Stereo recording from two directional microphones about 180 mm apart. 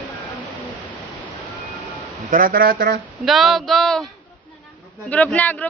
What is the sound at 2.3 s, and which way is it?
Speech, 55° right (ahead or behind).